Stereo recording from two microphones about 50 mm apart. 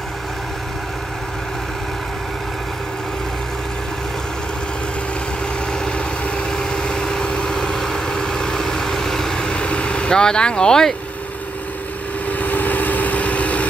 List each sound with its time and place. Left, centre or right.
5.7 s vehicle: centre
12.3 s vehicle: left